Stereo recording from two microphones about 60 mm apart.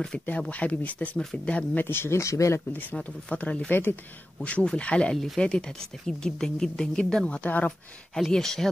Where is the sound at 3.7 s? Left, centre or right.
Left.